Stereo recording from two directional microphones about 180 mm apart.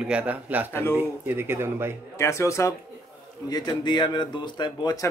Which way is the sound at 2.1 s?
15° left (ahead or behind).